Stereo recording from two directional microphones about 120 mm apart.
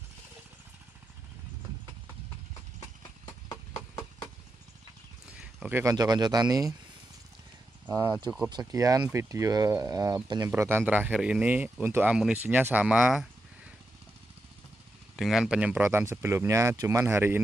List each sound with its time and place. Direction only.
5.2 s horse: 5° right (ahead or behind)
5.8 s speech: 30° right (ahead or behind)
7.9 s speech: 35° right (ahead or behind)
10.5 s speech: 20° right (ahead or behind)
15.1 s speech: 5° right (ahead or behind); by 17.4 s 20° right (ahead or behind)